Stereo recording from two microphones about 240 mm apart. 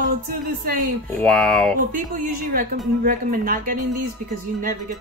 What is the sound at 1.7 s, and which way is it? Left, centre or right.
Speech, right.